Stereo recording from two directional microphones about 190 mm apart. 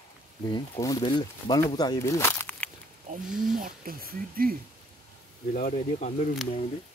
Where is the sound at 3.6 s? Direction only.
50° right (ahead or behind).